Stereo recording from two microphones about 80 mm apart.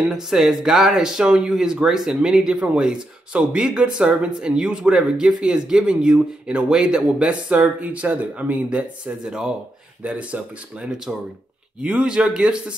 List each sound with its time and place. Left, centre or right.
0.1 s speech: centre